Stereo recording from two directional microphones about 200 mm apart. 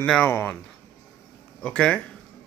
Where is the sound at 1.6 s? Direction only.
5° left (ahead or behind).